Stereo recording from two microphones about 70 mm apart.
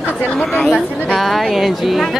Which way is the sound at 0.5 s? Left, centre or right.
Centre.